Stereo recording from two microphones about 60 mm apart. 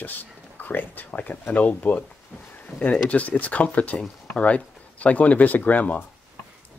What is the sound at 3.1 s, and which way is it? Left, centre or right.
Speech, left.